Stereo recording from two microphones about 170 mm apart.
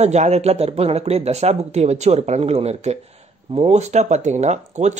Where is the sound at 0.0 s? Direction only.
40° right (ahead or behind).